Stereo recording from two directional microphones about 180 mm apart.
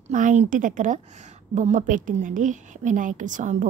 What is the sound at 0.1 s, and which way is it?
A woman's voice, 45° right (ahead or behind).